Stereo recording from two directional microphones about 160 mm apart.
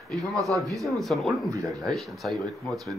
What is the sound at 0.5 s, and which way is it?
Speech, 20° right (ahead or behind).